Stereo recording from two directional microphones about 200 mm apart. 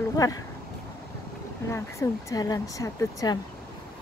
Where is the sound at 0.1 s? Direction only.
15° left (ahead or behind).